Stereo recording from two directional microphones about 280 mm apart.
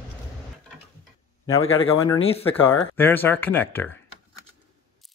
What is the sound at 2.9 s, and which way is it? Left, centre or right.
Speech, centre.